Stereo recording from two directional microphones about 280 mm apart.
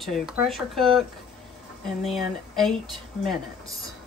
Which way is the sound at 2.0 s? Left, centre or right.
Centre.